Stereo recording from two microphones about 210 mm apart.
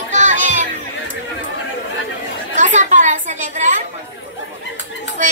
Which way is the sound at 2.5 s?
35° right (ahead or behind).